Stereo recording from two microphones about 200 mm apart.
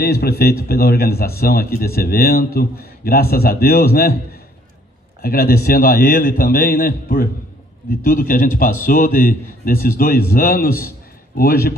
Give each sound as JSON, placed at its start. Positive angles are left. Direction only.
{"t": 0.0, "sound": "a man's voice", "side_deg": 50}
{"t": 5.2, "sound": "a man's voice", "side_deg": 50}